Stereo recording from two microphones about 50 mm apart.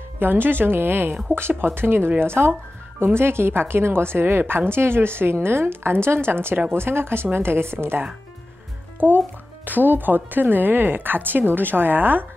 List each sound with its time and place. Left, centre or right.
0.2 s a woman's voice: right
9.0 s a woman's voice: right